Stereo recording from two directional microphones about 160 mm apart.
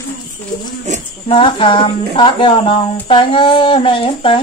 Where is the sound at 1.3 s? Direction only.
30° left (ahead or behind).